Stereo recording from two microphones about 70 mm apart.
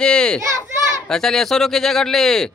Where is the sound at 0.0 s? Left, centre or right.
Centre.